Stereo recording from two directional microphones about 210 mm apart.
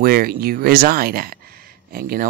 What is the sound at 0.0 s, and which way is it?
Speech, 45° right (ahead or behind).